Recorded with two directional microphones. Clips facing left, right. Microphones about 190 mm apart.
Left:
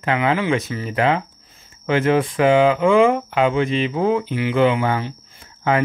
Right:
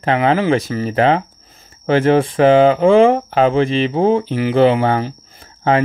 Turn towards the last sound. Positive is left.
turn(degrees=-30)  # may be behind; listen again after turning